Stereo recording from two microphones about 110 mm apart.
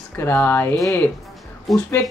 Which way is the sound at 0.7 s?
30° left (ahead or behind).